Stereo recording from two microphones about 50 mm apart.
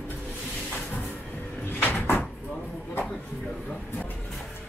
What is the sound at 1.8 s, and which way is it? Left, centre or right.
Cupboard open or close, left.